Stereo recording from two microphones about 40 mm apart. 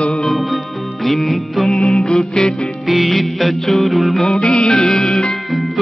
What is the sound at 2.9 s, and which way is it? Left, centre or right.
Music, centre.